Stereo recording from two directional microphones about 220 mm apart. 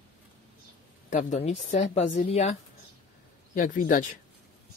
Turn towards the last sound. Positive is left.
turn(degrees=35)  # may be behind; listen again after turning